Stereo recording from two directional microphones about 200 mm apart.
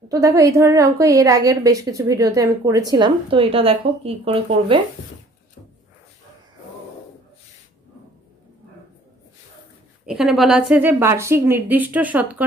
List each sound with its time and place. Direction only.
0.1 s a woman's voice: 15° right (ahead or behind)
10.0 s a woman's voice: centre (ahead or behind)